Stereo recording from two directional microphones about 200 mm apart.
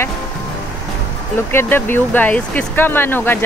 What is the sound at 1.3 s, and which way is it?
Speech, 10° left (ahead or behind).